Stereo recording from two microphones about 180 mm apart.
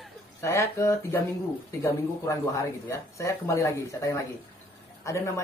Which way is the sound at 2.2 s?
15° left (ahead or behind).